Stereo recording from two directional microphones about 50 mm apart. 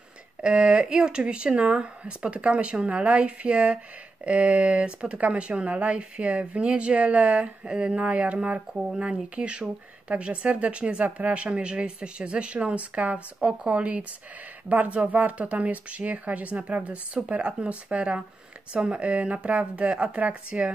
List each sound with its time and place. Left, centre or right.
0.4 s speech: right